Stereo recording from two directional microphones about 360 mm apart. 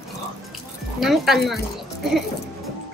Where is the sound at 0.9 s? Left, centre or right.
Centre.